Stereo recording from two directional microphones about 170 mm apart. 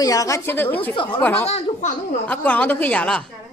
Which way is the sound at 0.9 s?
30° left (ahead or behind).